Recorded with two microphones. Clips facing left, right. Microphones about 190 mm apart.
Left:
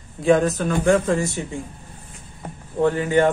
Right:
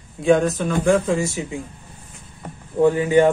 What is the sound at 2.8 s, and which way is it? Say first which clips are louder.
Speech: right 3 dB; 15° right (ahead or behind).